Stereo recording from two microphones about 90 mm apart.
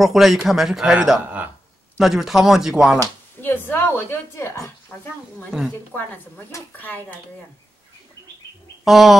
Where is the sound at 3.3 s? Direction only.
20° left (ahead or behind).